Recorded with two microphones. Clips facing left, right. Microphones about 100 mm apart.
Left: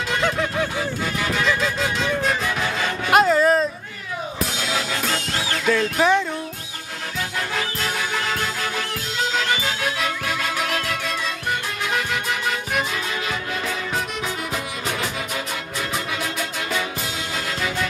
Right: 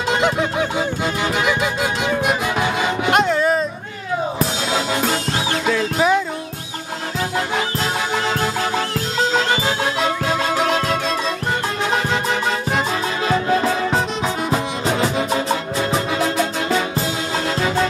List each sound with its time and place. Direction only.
0.1 s honk: 20° right (ahead or behind)
1.3 s music: 20° right (ahead or behind)
3.1 s a sound: centre (ahead or behind)
4.6 s music: 25° right (ahead or behind)
5.8 s music: 5° right (ahead or behind)
7.3 s music: 25° right (ahead or behind)